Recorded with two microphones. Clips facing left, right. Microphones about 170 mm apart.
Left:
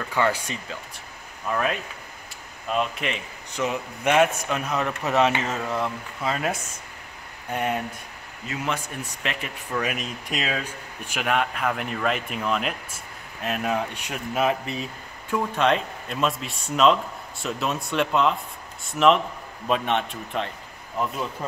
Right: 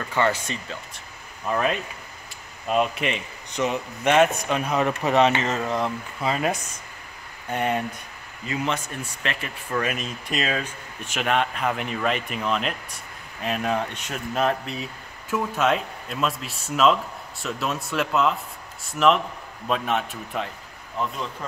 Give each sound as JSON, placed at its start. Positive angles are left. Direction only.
{"t": 0.1, "sound": "speech", "side_deg": 10}
{"t": 2.7, "sound": "speech", "side_deg": -5}
{"t": 7.5, "sound": "speech", "side_deg": 5}